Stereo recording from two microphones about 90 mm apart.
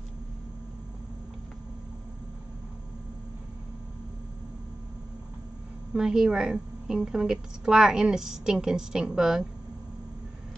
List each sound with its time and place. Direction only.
5.9 s a woman's voice: 5° right (ahead or behind)